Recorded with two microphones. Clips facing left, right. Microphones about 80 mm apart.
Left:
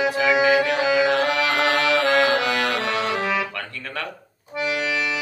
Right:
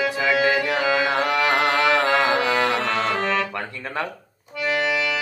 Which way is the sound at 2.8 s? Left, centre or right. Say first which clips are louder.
Right 1 dB; centre.